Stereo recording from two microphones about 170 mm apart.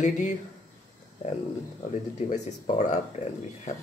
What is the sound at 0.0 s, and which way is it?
Speech, 45° left (ahead or behind).